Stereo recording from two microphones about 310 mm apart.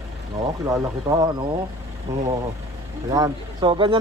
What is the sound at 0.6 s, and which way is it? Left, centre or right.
Speech, centre.